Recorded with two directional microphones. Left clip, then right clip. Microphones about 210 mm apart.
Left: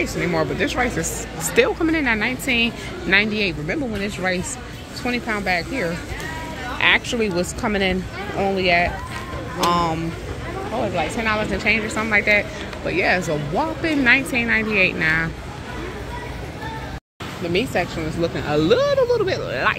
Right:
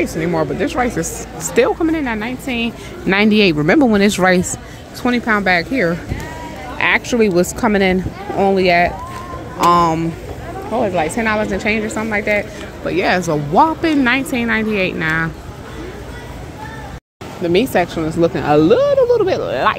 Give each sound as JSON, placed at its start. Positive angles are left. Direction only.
{"t": 0.0, "sound": "speech", "side_deg": -35}
{"t": 3.1, "sound": "speech", "side_deg": -35}
{"t": 12.0, "sound": "speech", "side_deg": -20}
{"t": 12.9, "sound": "speech", "side_deg": -35}
{"t": 17.4, "sound": "speech", "side_deg": -45}
{"t": 18.6, "sound": "speech", "side_deg": -25}